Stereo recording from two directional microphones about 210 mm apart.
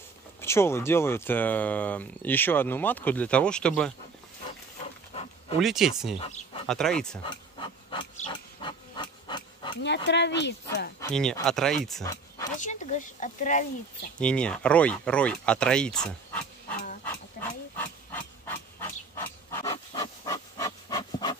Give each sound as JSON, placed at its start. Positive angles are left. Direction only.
{"t": 0.4, "sound": "speech", "side_deg": 10}
{"t": 5.6, "sound": "speech", "side_deg": 0}
{"t": 6.1, "sound": "speech", "side_deg": 30}
{"t": 6.7, "sound": "speech", "side_deg": 5}
{"t": 7.2, "sound": "a sound", "side_deg": 25}
{"t": 9.8, "sound": "speech", "side_deg": 55}
{"t": 11.4, "sound": "speech", "side_deg": 0}
{"t": 12.0, "sound": "a sound", "side_deg": 15}
{"t": 12.5, "sound": "speech", "side_deg": 35}
{"t": 14.2, "sound": "speech", "side_deg": 5}
{"t": 17.0, "sound": "a sound", "side_deg": 10}